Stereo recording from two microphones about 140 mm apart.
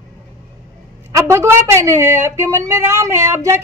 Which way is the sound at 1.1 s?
20° right (ahead or behind).